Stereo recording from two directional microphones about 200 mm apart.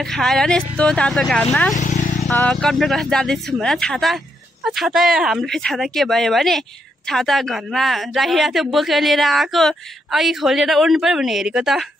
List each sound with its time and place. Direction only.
0.0 s speech: 5° left (ahead or behind)
1.8 s vehicle: 35° left (ahead or behind)
2.2 s speech: 5° left (ahead or behind)